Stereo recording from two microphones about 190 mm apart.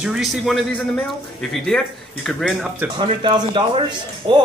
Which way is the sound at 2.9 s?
25° right (ahead or behind).